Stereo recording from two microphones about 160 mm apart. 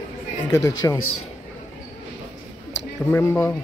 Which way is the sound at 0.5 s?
20° left (ahead or behind).